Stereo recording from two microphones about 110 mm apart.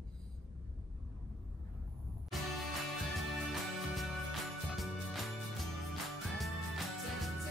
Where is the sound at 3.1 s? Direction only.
Centre (ahead or behind).